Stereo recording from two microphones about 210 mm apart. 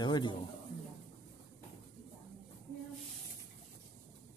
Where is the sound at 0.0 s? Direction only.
20° left (ahead or behind).